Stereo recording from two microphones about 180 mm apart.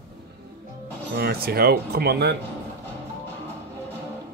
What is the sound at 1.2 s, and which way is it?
Speech, 60° right (ahead or behind).